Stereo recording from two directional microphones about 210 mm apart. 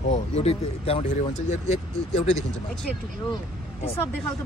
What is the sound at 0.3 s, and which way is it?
Speech, 30° left (ahead or behind).